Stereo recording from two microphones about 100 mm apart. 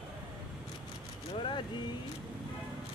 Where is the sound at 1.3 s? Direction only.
60° left (ahead or behind).